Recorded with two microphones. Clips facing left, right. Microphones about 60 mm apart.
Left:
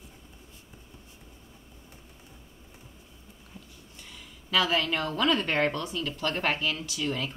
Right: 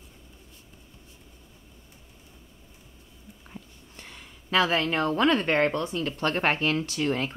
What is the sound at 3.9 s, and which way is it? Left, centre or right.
A woman's voice, right.